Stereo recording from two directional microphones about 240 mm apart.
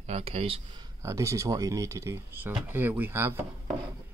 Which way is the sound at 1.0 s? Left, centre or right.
Centre.